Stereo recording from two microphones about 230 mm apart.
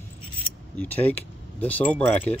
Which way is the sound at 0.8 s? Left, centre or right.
Centre.